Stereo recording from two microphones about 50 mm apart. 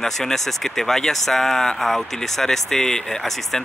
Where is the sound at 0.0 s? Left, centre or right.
Centre.